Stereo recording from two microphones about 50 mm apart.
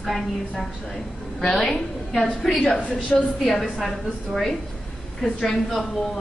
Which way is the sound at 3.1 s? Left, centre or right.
Left.